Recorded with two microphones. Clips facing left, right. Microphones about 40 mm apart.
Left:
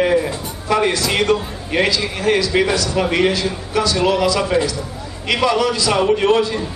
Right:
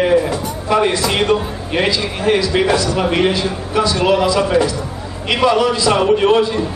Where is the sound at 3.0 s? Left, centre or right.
Centre.